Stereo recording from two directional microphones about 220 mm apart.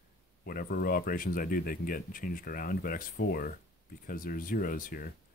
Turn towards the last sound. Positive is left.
turn(degrees=40)  # may be behind; listen again after turning